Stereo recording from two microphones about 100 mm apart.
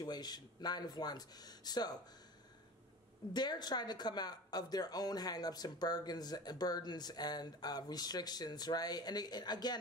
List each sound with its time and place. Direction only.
0.0 s speech: 45° left (ahead or behind)
3.3 s speech: 45° left (ahead or behind)